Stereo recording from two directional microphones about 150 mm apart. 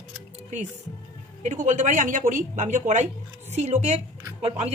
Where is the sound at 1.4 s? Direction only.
55° right (ahead or behind).